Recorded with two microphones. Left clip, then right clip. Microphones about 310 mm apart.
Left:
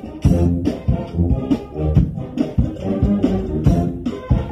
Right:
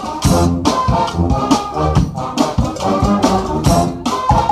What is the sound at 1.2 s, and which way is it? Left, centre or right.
Music, right.